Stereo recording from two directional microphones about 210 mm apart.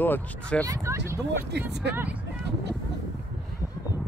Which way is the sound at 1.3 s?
55° right (ahead or behind).